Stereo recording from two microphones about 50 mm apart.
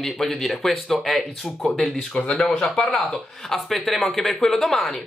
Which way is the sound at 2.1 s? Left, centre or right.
Left.